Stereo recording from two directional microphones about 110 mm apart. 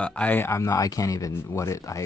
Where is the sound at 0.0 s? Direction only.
10° left (ahead or behind).